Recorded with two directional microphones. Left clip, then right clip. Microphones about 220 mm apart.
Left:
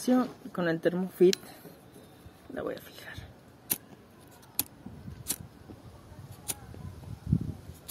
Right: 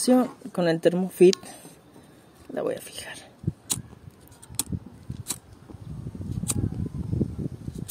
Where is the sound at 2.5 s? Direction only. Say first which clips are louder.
Right 8 dB; 35° right (ahead or behind).